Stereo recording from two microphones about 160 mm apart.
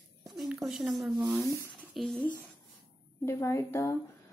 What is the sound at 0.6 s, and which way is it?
Speech, centre (ahead or behind).